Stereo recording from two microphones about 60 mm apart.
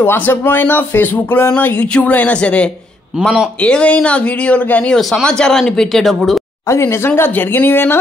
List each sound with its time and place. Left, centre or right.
0.0 s speech: left
4.9 s speech: centre
6.7 s speech: left